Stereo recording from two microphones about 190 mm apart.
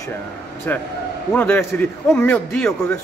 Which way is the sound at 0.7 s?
10° left (ahead or behind).